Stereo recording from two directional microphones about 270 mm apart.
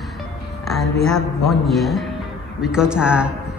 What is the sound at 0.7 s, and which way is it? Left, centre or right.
A man's voice, centre.